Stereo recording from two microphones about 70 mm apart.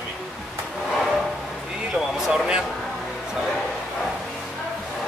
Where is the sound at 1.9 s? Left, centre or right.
Centre.